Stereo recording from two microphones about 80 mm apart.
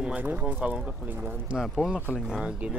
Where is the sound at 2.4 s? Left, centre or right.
Centre.